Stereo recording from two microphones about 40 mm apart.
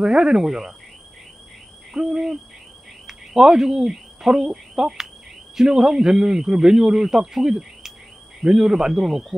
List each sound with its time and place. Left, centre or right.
0.0 s a man's voice: centre
2.0 s hoot: centre
3.1 s a man's voice: centre